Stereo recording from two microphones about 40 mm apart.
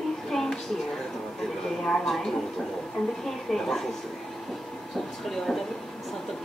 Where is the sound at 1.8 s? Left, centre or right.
Left.